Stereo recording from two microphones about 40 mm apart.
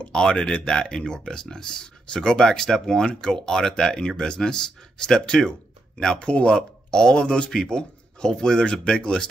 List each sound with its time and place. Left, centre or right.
0.0 s speech: left
3.1 s speech: left